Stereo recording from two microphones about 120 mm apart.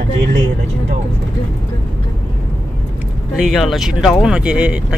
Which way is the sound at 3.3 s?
Centre (ahead or behind).